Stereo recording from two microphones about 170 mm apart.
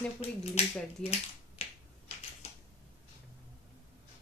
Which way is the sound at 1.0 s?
35° left (ahead or behind).